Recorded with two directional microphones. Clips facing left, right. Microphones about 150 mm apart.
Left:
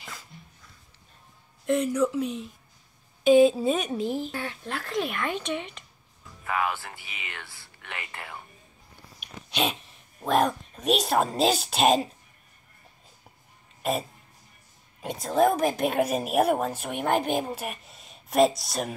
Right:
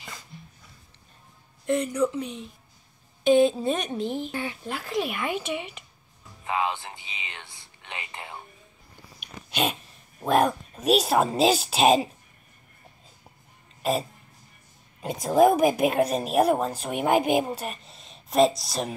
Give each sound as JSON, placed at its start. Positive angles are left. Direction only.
{"t": 1.7, "sound": "speech", "side_deg": 0}
{"t": 6.4, "sound": "whispering", "side_deg": -20}
{"t": 9.2, "sound": "a sound", "side_deg": 0}
{"t": 10.2, "sound": "speech", "side_deg": -5}
{"t": 15.2, "sound": "speech", "side_deg": -10}
{"t": 16.0, "sound": "speech", "side_deg": 5}
{"t": 17.0, "sound": "speech", "side_deg": -10}
{"t": 17.6, "sound": "speech", "side_deg": 5}